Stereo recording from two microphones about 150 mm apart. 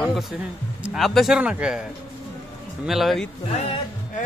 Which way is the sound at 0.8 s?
Centre (ahead or behind).